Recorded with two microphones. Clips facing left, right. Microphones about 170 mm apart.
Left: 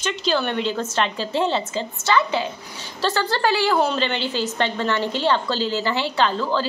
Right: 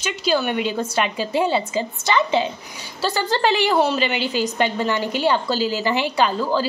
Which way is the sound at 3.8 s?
5° right (ahead or behind).